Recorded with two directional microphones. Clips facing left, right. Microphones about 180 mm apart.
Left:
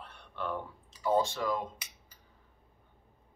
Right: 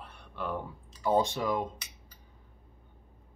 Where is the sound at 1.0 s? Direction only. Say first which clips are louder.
Right 2 dB; 15° right (ahead or behind).